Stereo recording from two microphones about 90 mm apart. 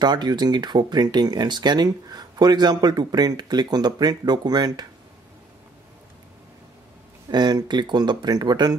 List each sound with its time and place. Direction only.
0.0 s speech: 55° right (ahead or behind)
7.2 s speech: 55° right (ahead or behind)